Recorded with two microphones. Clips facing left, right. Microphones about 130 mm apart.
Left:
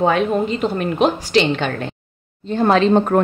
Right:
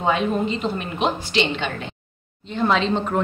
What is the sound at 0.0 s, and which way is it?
A woman's voice, 50° left (ahead or behind).